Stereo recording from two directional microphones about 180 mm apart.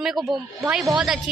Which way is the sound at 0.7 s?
5° right (ahead or behind).